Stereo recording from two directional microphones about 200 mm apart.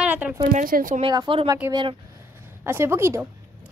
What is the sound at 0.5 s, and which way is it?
Speech, 45° right (ahead or behind).